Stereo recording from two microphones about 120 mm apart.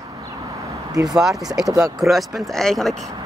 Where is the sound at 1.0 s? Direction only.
5° right (ahead or behind).